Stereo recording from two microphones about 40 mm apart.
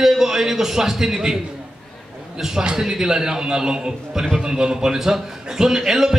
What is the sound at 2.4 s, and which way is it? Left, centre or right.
A man's voice, centre.